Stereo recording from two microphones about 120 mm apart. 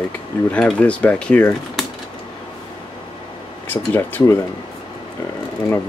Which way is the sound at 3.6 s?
15° left (ahead or behind).